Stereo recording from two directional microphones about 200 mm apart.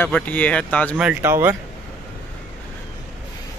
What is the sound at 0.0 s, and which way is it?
Speech, 5° left (ahead or behind).